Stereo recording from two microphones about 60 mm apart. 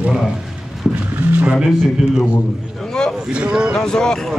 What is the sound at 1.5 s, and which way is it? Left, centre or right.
Speech, centre.